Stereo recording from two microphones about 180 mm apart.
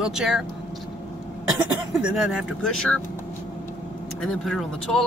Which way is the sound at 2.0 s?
5° right (ahead or behind).